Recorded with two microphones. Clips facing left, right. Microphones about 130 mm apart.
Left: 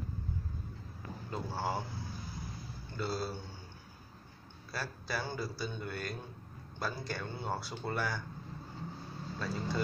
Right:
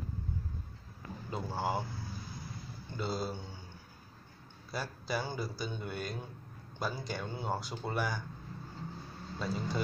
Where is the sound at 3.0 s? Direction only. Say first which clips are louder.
Even; 15° right (ahead or behind).